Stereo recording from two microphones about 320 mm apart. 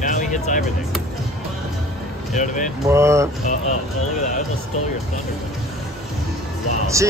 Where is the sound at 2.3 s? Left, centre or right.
Left.